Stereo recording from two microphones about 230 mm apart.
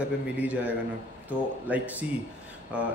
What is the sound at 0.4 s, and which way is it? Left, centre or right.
A man's voice, centre.